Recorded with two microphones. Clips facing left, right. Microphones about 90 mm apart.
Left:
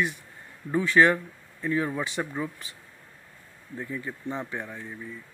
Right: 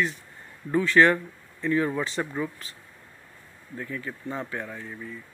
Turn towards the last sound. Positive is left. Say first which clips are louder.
# right 1 dB
turn(degrees=15)  # may be behind; listen again after turning